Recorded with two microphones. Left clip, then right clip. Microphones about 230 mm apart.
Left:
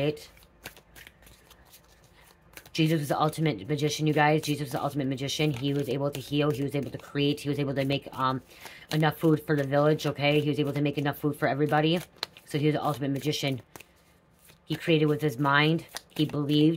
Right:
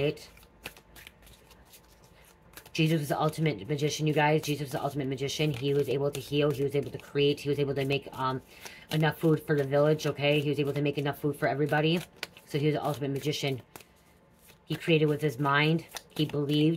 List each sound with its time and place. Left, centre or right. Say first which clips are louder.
0.0 s speech: left 1 dB; left
2.7 s speech: left 2 dB; left
14.8 s speech: left 1 dB; left